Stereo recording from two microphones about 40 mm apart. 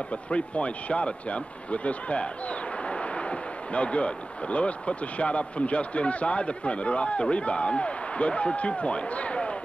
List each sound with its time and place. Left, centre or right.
0.1 s speech: left